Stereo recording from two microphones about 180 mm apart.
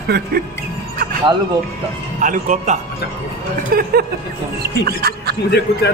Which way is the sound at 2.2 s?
45° right (ahead or behind).